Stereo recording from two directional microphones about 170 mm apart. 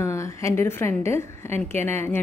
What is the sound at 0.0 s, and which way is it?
A woman's voice, 15° left (ahead or behind).